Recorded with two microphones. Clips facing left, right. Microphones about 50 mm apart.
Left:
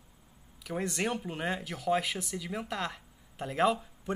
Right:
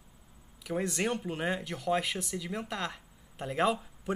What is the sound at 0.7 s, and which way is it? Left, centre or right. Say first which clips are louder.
Speech: right 1 dB; centre.